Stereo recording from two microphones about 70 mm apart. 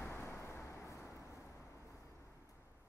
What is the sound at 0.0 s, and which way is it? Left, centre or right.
Vehicle, left.